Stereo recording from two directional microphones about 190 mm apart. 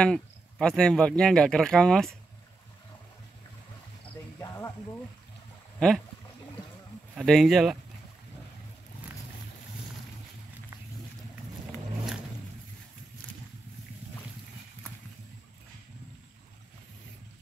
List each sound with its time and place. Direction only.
0.0 s speech: 5° left (ahead or behind)
4.4 s snake: 15° left (ahead or behind)
5.8 s speech: 5° left (ahead or behind)
7.2 s speech: centre (ahead or behind)